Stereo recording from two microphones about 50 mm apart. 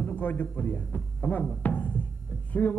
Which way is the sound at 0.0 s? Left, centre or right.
Left.